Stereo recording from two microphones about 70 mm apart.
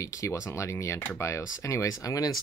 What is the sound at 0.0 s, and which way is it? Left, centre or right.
Speech, left.